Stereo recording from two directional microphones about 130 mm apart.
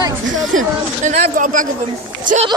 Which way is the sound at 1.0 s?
90° right.